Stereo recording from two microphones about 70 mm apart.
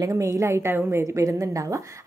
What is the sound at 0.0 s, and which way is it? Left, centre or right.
A woman's voice, right.